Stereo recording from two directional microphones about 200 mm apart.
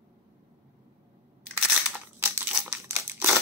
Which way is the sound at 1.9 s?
10° right (ahead or behind).